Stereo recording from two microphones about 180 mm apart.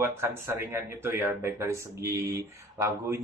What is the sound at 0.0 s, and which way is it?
Speech, 15° right (ahead or behind).